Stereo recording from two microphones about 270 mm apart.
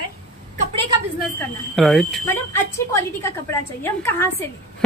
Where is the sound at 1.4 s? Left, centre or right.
Centre.